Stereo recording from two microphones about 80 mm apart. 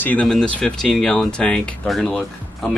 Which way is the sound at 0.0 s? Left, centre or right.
Left.